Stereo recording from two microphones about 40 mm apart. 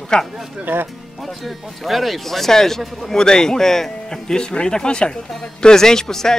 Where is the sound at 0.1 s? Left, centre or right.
Left.